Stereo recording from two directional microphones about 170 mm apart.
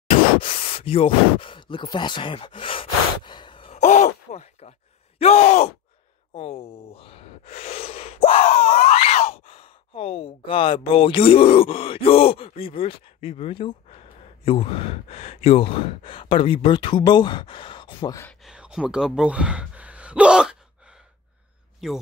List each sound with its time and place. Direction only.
0.4 s a sound: 35° left (ahead or behind)
3.8 s sigh: 45° left (ahead or behind)
5.2 s speech: 40° left (ahead or behind)
18.4 s gasp: 5° right (ahead or behind)
21.8 s a man's voice: centre (ahead or behind)